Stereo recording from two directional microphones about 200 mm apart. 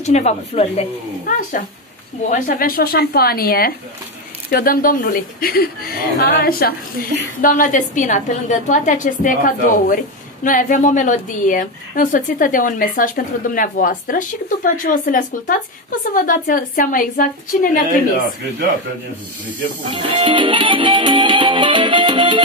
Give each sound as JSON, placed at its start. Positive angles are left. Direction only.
{"t": 0.0, "sound": "a woman's voice", "side_deg": 35}
{"t": 20.0, "sound": "music", "side_deg": -25}